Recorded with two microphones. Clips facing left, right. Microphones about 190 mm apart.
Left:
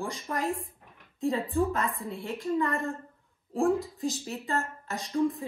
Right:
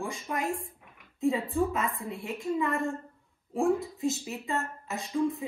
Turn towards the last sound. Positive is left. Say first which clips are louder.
# left 1 dB
turn(degrees=0)  # may be behind; listen again after turning